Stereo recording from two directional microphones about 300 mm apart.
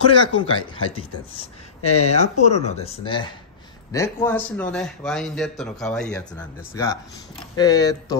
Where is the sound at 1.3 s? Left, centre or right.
Centre.